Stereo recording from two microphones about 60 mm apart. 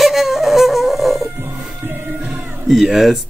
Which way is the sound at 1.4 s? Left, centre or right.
Right.